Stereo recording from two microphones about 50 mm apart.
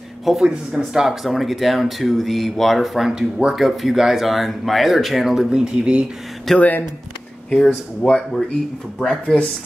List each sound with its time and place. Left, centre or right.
0.2 s speech: centre
0.5 s speech: centre
1.0 s speech: centre
3.1 s speech: centre
3.5 s speech: centre
6.5 s speech: centre